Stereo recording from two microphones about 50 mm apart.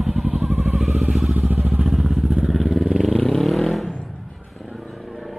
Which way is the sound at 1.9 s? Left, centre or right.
Centre.